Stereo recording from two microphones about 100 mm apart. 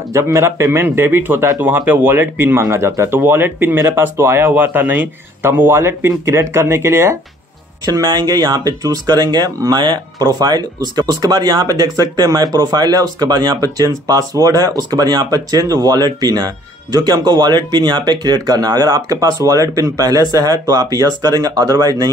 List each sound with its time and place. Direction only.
0.1 s speech: 30° right (ahead or behind)
7.8 s speech: 40° right (ahead or behind)